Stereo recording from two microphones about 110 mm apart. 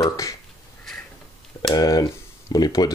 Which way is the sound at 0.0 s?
35° left (ahead or behind).